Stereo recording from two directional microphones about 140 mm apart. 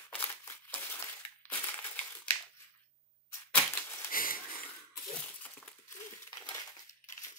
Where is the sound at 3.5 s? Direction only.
15° left (ahead or behind).